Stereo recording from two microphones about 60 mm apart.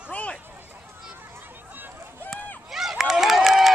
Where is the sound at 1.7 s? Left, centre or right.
Right.